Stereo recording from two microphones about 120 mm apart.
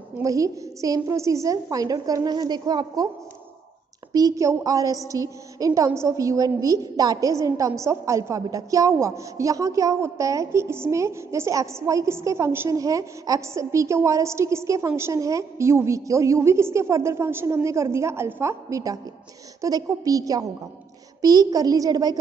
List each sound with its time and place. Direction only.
0.2 s a woman's voice: 25° right (ahead or behind)
4.1 s a child's voice: 30° right (ahead or behind)